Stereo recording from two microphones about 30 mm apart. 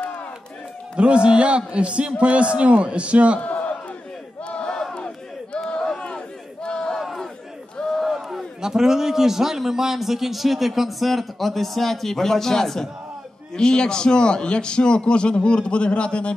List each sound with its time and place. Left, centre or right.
0.9 s a man's voice: right
3.3 s a sound: left
4.5 s battle cry: left
7.0 s crowd: centre
7.7 s battle cry: left
8.0 s a sound: centre
8.5 s a man's voice: centre
13.6 s a man's voice: left